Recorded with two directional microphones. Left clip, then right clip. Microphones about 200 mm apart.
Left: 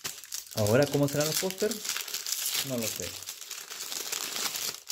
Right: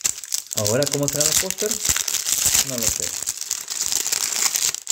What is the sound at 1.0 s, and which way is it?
Speech, 5° left (ahead or behind).